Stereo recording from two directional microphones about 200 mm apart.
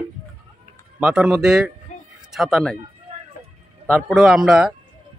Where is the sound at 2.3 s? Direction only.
Centre (ahead or behind).